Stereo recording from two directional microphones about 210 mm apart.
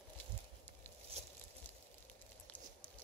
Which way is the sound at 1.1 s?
30° right (ahead or behind).